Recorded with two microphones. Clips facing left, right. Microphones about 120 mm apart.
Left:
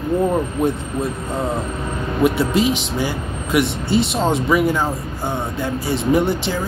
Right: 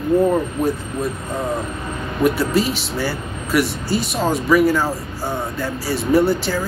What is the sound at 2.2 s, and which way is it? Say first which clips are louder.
Speech: left 1 dB; 20° left (ahead or behind).